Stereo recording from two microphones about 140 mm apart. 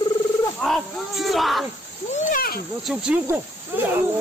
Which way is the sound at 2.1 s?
75° left (ahead or behind).